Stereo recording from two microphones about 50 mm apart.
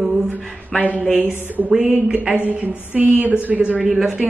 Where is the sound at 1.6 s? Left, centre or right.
Centre.